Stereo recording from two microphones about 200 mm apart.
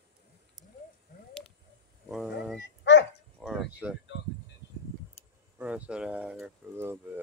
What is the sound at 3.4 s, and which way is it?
Speech, centre (ahead or behind).